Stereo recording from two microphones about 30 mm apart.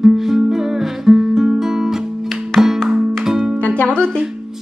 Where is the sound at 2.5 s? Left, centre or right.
Centre.